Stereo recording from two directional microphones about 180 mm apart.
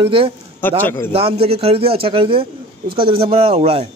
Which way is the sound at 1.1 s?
35° right (ahead or behind).